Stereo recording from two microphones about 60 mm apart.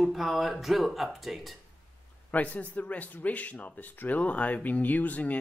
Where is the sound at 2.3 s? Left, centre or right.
Left.